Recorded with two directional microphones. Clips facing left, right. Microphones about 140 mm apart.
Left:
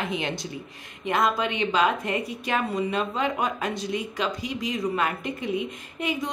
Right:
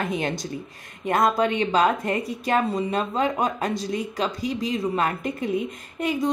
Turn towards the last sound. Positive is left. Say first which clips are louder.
# right 4 dB
turn(degrees=-40)  # may be behind; listen again after turning